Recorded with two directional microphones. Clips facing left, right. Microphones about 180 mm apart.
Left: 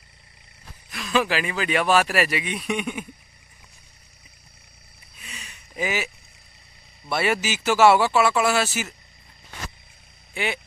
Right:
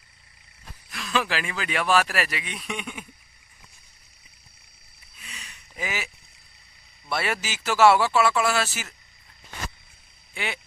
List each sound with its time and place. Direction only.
0.9 s speech: 10° left (ahead or behind)
2.0 s speech: 5° left (ahead or behind)
7.1 s speech: 5° left (ahead or behind)
10.3 s vehicle: 10° left (ahead or behind)